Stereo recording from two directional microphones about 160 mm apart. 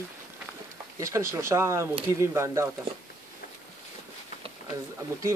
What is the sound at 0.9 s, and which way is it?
Speech, 20° right (ahead or behind).